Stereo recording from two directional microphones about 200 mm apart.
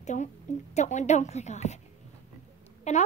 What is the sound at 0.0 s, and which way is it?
A woman's voice, 35° left (ahead or behind).